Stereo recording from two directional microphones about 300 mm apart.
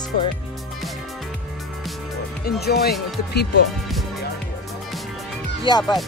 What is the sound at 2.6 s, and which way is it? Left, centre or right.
Speech, left.